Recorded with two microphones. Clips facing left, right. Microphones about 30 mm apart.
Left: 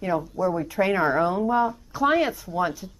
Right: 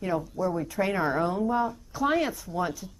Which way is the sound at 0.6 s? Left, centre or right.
Centre.